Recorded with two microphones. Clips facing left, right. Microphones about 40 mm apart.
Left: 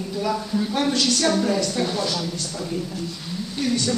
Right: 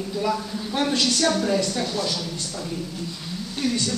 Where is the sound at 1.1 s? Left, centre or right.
Centre.